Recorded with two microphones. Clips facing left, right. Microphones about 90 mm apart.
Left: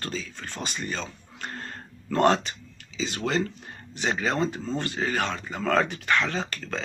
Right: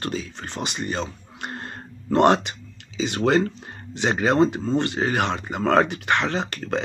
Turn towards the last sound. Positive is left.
turn(degrees=-25)  # may be behind; listen again after turning